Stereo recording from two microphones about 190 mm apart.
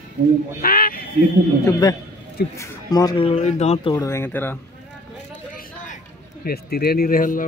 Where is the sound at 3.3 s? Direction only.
35° left (ahead or behind).